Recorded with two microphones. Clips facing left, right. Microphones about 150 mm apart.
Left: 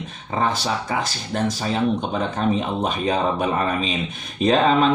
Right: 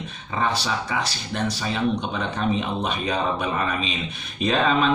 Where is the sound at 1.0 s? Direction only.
45° left (ahead or behind).